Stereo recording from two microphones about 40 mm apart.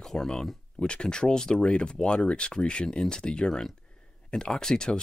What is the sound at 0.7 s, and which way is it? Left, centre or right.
Speech, left.